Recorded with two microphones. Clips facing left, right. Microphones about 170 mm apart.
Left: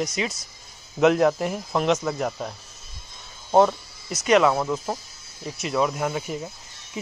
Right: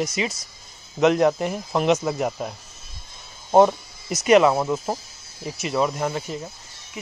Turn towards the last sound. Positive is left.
turn(degrees=5)  # may be behind; listen again after turning